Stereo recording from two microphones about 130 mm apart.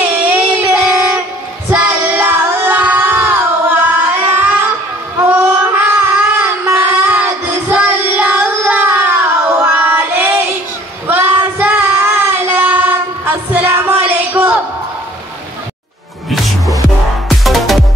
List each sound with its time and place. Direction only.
0.8 s train: 10° right (ahead or behind)
1.7 s child singing: 15° right (ahead or behind)
5.2 s a sound: 15° right (ahead or behind)
8.2 s child singing: 15° right (ahead or behind)
17.3 s music: centre (ahead or behind)